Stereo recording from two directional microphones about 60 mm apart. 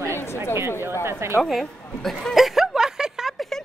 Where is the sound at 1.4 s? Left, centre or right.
Centre.